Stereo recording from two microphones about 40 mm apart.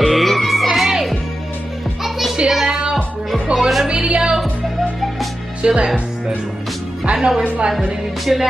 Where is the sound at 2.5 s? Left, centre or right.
Centre.